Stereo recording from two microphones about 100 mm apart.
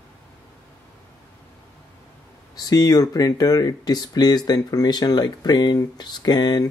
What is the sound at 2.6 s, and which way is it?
Speech, 40° left (ahead or behind).